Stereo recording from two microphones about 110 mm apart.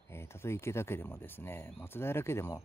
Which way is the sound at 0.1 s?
25° left (ahead or behind).